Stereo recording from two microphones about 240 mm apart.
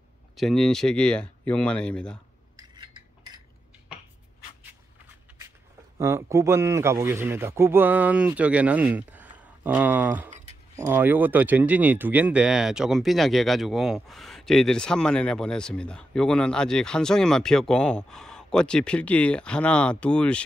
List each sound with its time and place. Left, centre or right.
0.4 s speech: centre
2.5 s cutlery: centre
5.9 s a man's voice: centre